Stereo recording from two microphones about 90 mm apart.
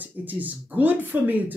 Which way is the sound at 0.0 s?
20° right (ahead or behind).